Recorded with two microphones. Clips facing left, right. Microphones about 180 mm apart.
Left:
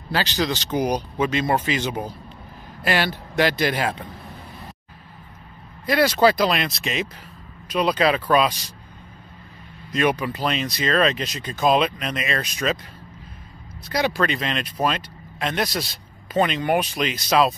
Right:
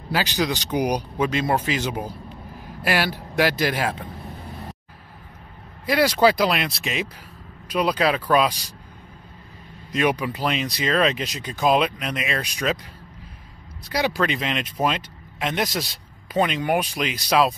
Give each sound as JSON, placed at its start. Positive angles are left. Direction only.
{"t": 0.1, "sound": "speech", "side_deg": -10}
{"t": 1.1, "sound": "speech", "side_deg": 0}
{"t": 5.9, "sound": "speech", "side_deg": -10}
{"t": 9.9, "sound": "speech", "side_deg": -15}
{"t": 13.9, "sound": "speech", "side_deg": -5}